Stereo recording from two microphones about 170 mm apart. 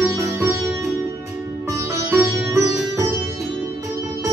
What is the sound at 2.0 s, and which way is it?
Music, 15° right (ahead or behind).